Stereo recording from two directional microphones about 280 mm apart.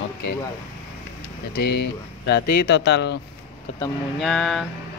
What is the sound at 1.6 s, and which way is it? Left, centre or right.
Speech, left.